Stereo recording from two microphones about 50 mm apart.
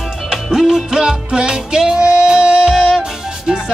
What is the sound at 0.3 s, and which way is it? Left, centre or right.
Music, centre.